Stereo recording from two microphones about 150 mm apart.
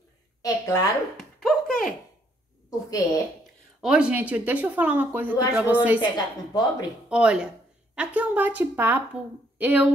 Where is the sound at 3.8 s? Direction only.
5° right (ahead or behind).